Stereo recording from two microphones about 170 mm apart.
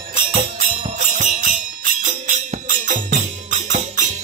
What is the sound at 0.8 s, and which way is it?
Music, 45° right (ahead or behind).